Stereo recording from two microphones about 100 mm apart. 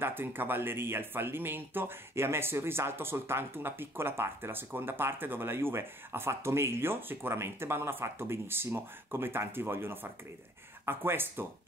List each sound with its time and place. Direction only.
0.0 s speech: 20° right (ahead or behind)